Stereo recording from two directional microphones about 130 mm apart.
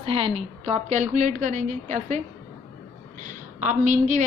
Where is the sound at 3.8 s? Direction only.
75° right (ahead or behind).